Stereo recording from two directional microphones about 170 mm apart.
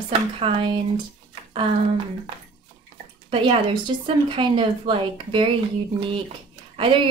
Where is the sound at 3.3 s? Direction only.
30° right (ahead or behind).